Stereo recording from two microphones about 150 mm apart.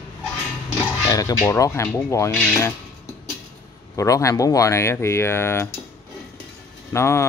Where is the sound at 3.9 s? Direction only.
20° left (ahead or behind).